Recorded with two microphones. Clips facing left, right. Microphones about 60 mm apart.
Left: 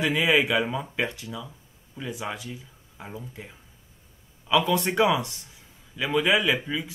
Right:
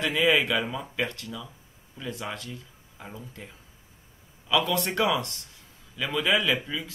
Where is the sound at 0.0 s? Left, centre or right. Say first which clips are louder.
Left 1 dB; centre.